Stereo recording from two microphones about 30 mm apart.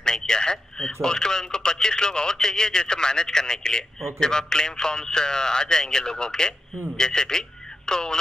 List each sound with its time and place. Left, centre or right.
0.0 s a man's voice: left